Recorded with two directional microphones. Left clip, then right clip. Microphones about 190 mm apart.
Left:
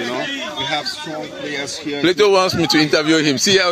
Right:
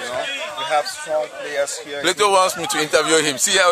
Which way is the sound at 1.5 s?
15° right (ahead or behind).